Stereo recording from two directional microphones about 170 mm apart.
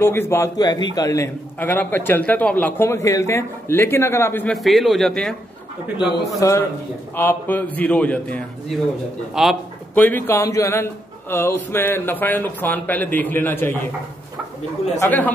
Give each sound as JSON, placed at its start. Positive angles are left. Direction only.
{"t": 0.0, "sound": "a man's voice", "side_deg": 15}
{"t": 4.6, "sound": "a man's voice", "side_deg": 0}
{"t": 5.9, "sound": "a man's voice", "side_deg": 85}
{"t": 7.2, "sound": "a man's voice", "side_deg": 10}
{"t": 9.3, "sound": "a man's voice", "side_deg": 0}
{"t": 9.9, "sound": "a man's voice", "side_deg": 10}
{"t": 15.0, "sound": "a man's voice", "side_deg": 10}